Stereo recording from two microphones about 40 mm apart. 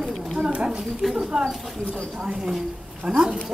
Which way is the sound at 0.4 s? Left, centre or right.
Right.